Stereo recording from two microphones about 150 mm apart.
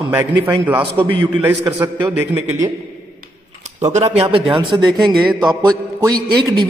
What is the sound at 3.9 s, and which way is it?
Speech, 45° right (ahead or behind).